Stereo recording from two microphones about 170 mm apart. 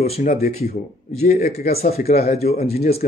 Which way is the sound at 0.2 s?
45° left (ahead or behind).